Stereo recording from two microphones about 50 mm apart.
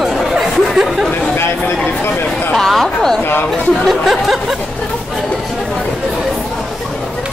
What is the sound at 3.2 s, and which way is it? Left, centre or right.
Speech, left.